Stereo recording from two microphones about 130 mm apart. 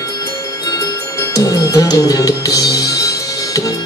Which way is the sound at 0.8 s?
25° left (ahead or behind).